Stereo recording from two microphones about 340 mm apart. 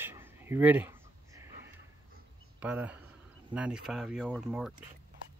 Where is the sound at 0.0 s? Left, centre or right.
Centre.